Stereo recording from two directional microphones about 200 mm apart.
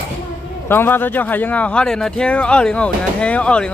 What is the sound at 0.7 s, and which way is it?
Speech, 10° left (ahead or behind).